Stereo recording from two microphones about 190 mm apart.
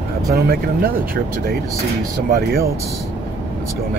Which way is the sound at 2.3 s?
55° right (ahead or behind).